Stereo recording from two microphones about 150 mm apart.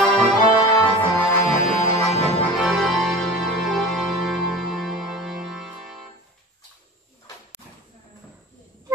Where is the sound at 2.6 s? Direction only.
Centre (ahead or behind).